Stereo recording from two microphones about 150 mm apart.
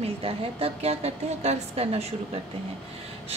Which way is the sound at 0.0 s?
40° right (ahead or behind).